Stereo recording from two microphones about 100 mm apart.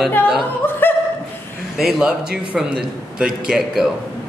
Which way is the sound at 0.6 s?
25° left (ahead or behind).